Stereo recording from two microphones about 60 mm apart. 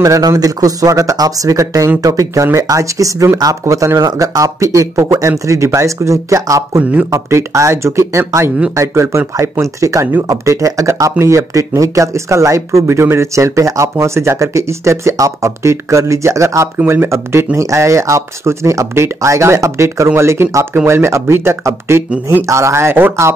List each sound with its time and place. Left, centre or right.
0.0 s speech: right
3.3 s speech: right
6.8 s speech: right
7.1 s speech: right
16.8 s speech: right
17.6 s speech: right